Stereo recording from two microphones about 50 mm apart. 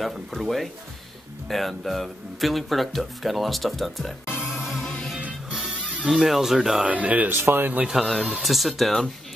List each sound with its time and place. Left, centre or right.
0.0 s speech: centre
4.5 s music: centre
6.0 s speech: centre
6.9 s speech: right
7.2 s speech: right
7.8 s speech: centre